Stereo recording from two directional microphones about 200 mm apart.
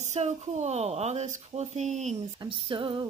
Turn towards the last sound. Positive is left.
turn(degrees=-25)  # may be behind; listen again after turning